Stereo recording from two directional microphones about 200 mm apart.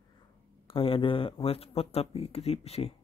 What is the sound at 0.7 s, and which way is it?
Speech, 25° left (ahead or behind).